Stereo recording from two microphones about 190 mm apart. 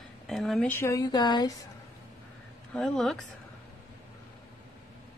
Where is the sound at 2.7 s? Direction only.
5° left (ahead or behind).